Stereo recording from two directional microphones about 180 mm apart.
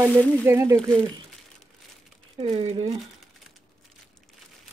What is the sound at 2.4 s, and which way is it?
Speech, 35° right (ahead or behind).